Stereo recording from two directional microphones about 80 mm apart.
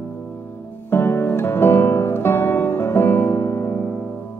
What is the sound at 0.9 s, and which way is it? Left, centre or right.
Music, left.